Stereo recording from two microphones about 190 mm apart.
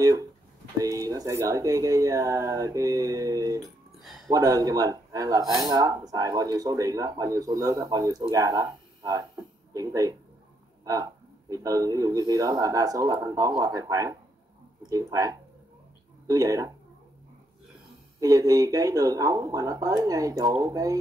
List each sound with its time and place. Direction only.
0.0 s speech: 20° right (ahead or behind)
3.9 s a sound: centre (ahead or behind)
4.3 s speech: 20° right (ahead or behind)
18.2 s speech: 20° right (ahead or behind)